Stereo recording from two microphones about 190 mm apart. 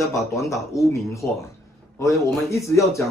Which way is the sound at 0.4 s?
15° left (ahead or behind).